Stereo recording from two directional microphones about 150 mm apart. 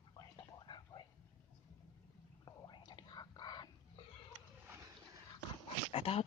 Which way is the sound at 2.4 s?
30° left (ahead or behind).